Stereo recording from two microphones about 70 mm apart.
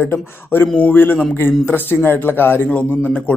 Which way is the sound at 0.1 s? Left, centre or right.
Left.